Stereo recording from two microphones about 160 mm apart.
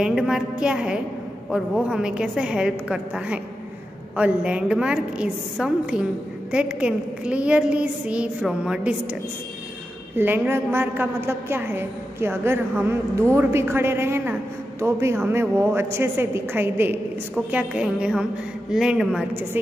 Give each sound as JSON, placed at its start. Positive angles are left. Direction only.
{"t": 0.0, "sound": "a woman's voice", "side_deg": -5}
{"t": 10.1, "sound": "a woman's voice", "side_deg": -10}